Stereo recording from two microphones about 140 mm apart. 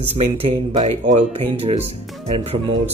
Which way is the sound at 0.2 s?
45° right (ahead or behind).